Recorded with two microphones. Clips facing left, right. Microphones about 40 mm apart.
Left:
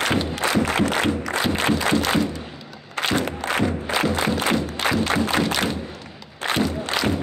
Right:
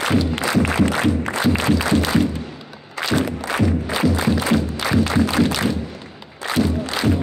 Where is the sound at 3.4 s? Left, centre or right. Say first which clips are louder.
Right 2 dB; left.